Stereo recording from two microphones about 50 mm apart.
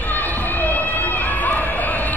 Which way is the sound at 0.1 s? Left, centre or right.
Left.